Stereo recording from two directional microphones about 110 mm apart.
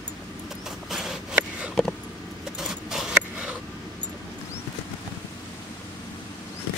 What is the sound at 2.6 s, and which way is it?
Keys jangling, 5° right (ahead or behind).